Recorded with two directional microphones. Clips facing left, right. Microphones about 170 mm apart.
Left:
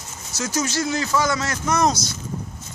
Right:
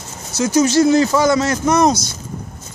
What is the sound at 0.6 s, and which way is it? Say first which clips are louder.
A man's voice: right 12 dB; 30° right (ahead or behind).